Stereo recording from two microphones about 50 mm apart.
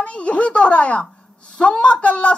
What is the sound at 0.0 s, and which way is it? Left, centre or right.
Speech, left.